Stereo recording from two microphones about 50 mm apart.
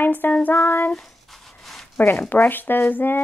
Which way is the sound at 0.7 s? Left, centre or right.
Left.